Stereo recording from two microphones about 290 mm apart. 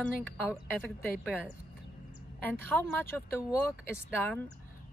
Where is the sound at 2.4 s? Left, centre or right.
Centre.